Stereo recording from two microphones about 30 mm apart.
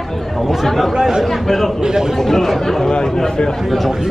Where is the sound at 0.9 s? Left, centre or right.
Centre.